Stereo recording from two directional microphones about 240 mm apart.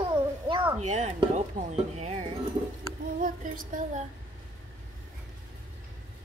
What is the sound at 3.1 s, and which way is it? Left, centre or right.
Music, right.